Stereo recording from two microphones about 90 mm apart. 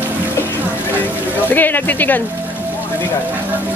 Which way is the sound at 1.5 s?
20° left (ahead or behind).